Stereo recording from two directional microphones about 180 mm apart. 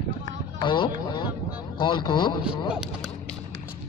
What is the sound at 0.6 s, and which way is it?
A man's voice, 25° left (ahead or behind).